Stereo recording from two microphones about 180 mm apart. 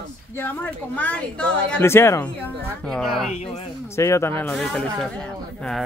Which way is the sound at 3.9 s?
15° left (ahead or behind).